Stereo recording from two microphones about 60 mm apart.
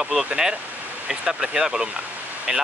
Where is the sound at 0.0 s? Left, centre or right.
Centre.